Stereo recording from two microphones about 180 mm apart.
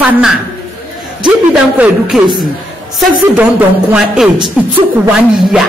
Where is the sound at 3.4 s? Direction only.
5° right (ahead or behind).